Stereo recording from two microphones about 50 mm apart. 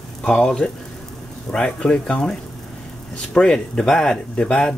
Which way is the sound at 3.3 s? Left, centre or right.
Centre.